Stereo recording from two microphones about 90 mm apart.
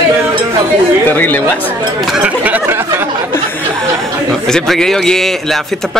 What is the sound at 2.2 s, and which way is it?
Speech, 20° right (ahead or behind).